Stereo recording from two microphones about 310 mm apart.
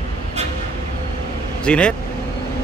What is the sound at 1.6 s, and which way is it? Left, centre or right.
Speech, centre.